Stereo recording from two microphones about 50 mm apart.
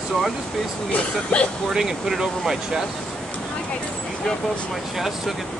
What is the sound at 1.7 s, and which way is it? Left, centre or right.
Speech, centre.